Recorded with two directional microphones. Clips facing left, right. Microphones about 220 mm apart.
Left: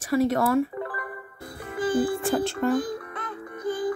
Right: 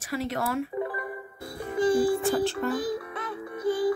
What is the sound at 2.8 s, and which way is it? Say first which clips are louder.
Music: right 2 dB; 5° right (ahead or behind).